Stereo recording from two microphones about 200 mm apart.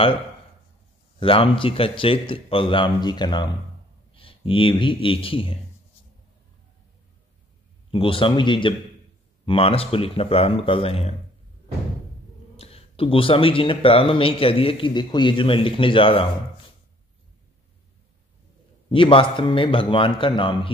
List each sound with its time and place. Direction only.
1.2 s a man's voice: 25° left (ahead or behind)
7.9 s speech: 25° left (ahead or behind)
12.5 s speech: 30° left (ahead or behind)
18.9 s speech: 25° left (ahead or behind)